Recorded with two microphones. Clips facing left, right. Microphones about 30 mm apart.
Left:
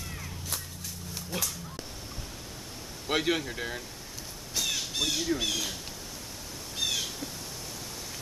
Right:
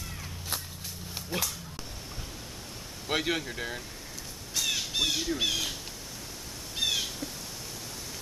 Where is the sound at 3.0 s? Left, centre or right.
Centre.